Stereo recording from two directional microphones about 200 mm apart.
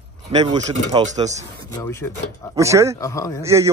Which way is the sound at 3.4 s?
15° right (ahead or behind).